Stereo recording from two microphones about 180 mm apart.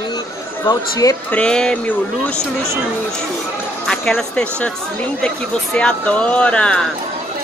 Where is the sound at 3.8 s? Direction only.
5° left (ahead or behind).